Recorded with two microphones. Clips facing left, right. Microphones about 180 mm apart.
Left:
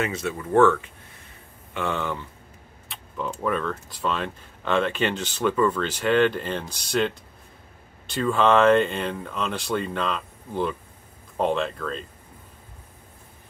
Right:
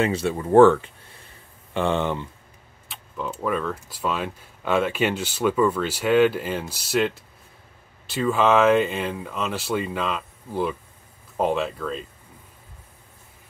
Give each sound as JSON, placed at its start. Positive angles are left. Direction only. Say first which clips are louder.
{"t": 0.0, "sound": "speech", "louder": "right 5 dB", "side_deg": -30}
{"t": 2.9, "sound": "speech", "louder": "even", "side_deg": 0}